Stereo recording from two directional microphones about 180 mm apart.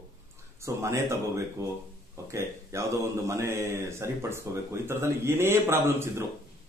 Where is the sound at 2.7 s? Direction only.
15° right (ahead or behind).